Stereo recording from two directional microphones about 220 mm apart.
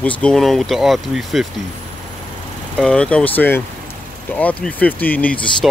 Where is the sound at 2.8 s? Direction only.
5° left (ahead or behind).